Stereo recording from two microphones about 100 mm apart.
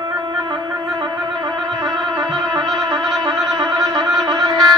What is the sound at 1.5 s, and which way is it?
Music, centre (ahead or behind).